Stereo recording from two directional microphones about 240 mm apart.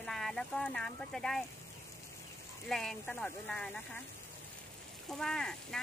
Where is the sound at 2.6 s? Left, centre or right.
Centre.